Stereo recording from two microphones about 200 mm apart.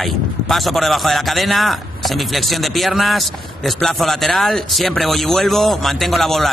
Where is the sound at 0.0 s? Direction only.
Centre (ahead or behind).